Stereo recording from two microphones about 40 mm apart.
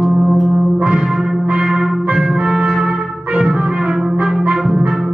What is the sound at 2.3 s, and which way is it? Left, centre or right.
Trumpet, centre.